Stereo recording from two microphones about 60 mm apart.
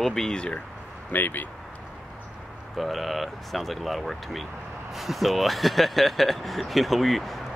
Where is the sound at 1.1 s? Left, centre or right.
Left.